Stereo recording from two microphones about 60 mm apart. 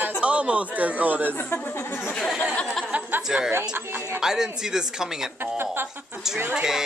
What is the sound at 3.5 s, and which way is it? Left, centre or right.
Speech, right.